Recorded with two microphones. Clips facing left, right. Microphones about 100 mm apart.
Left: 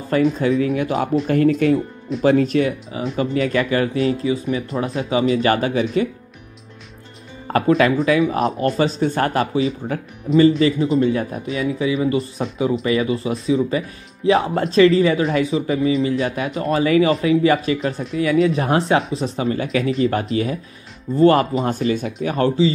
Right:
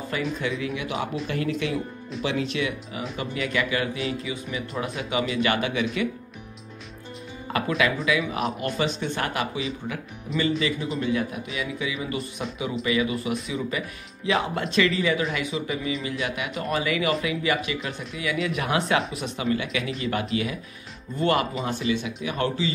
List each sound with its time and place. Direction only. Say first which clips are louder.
0.1 s speech: left 12 dB; 40° left (ahead or behind)
7.5 s speech: left 9 dB; 40° left (ahead or behind)